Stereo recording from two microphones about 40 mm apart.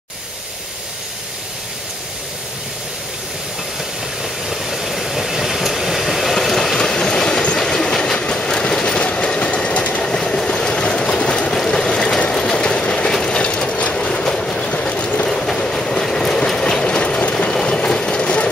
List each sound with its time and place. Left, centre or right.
4.2 s vehicle: centre
6.8 s train: centre
10.0 s vehicle: centre
12.3 s train: centre
15.2 s train: centre; by 18.5 s left